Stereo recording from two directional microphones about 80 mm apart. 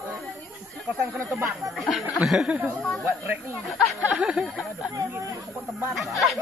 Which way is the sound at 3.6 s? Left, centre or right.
Centre.